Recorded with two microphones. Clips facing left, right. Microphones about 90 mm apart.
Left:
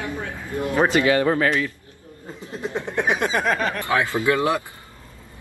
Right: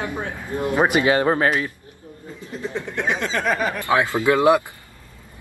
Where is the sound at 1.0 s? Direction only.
35° right (ahead or behind).